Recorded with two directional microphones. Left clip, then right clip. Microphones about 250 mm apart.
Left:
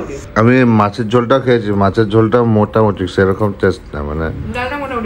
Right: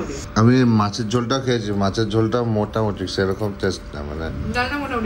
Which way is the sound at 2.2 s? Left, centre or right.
Left.